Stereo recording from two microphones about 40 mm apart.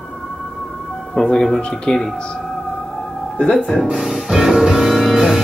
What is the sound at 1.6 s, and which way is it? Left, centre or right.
Speech, left.